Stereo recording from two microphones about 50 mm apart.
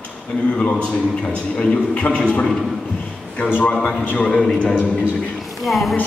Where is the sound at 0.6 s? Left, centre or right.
Centre.